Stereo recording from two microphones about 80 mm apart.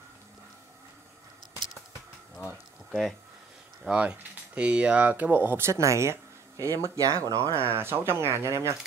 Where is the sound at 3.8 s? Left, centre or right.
Centre; by 8.8 s right.